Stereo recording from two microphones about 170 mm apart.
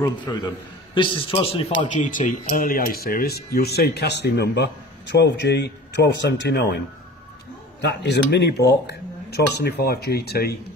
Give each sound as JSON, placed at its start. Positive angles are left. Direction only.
{"t": 0.3, "sound": "a man's voice", "side_deg": 20}
{"t": 7.8, "sound": "a man's voice", "side_deg": 85}